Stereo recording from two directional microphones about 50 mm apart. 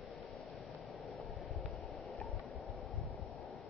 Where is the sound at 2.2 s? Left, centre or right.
Left.